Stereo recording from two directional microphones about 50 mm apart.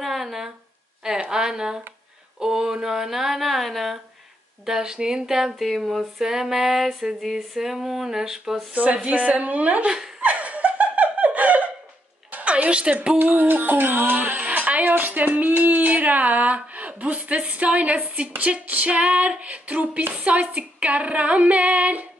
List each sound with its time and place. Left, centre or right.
0.0 s a sound: centre
1.3 s speech: centre
4.6 s speech: centre
8.9 s female singing: right
10.2 s laughter: right
12.3 s a sound: right
13.1 s speech: right
18.4 s female singing: right